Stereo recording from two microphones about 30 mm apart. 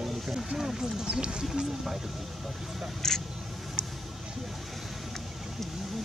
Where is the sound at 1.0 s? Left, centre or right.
Right.